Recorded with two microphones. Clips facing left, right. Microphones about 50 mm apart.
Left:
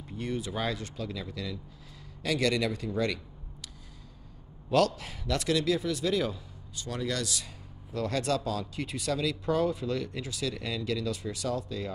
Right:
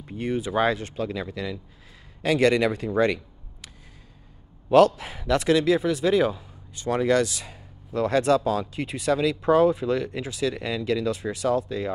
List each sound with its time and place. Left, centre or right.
0.2 s speech: right
4.6 s a man's voice: right